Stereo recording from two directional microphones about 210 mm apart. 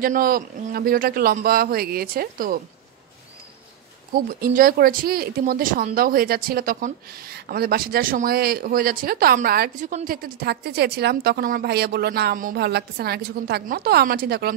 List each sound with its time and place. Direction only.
0.0 s speech: 45° right (ahead or behind)
4.1 s speech: 40° right (ahead or behind)